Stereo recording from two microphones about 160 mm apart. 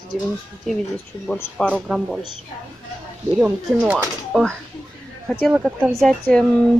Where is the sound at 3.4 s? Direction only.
10° right (ahead or behind).